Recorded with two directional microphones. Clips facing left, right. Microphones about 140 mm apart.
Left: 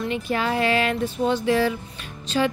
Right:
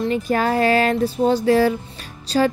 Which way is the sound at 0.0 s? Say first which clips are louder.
Right 5 dB; 40° right (ahead or behind).